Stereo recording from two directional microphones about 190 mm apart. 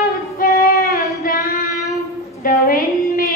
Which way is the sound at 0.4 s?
55° left (ahead or behind).